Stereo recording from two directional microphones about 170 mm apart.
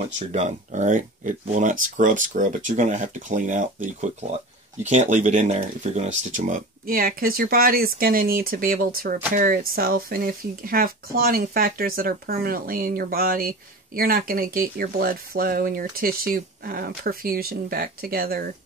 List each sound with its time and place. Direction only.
0.3 s speech: 40° right (ahead or behind); by 18.5 s 60° right (ahead or behind)